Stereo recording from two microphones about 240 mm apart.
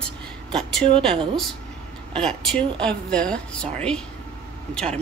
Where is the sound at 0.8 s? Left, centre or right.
Right.